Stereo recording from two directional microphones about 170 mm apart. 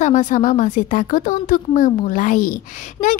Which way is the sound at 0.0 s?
50° left (ahead or behind).